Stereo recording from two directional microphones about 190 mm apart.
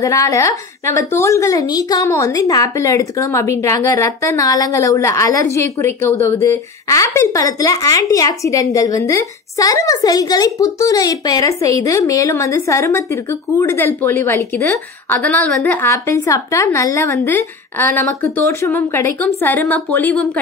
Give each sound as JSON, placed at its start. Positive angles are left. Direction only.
{"t": 0.0, "sound": "a woman's voice", "side_deg": 15}